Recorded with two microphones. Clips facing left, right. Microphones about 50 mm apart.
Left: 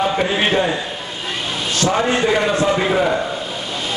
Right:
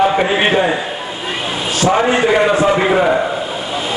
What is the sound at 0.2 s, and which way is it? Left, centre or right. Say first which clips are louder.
Speech: right 4 dB; centre.